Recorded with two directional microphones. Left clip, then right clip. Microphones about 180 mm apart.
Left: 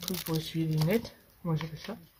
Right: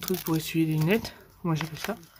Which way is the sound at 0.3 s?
55° right (ahead or behind).